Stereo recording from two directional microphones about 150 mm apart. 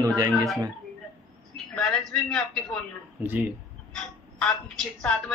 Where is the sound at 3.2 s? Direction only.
10° right (ahead or behind).